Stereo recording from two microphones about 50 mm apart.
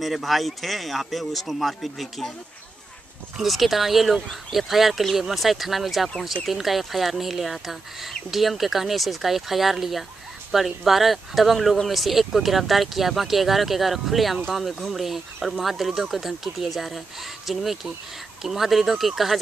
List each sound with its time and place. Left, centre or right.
0.0 s speech: centre
3.3 s speech: centre